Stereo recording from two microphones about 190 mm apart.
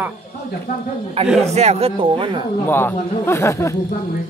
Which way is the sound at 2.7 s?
10° left (ahead or behind).